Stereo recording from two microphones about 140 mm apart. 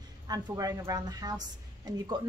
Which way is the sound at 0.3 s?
25° right (ahead or behind).